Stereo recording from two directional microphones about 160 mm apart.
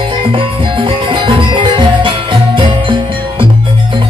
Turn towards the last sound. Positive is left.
turn(degrees=-30)  # may be behind; listen again after turning